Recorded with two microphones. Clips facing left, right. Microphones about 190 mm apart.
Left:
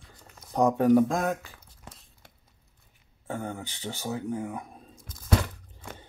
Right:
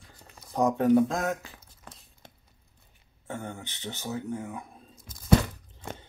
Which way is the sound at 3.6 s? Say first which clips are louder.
Left 2 dB; 10° left (ahead or behind).